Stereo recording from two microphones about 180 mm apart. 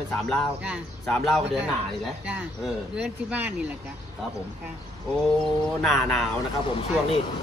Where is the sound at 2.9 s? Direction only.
5° right (ahead or behind).